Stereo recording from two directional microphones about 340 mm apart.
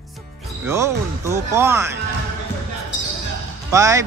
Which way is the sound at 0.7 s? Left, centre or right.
Centre.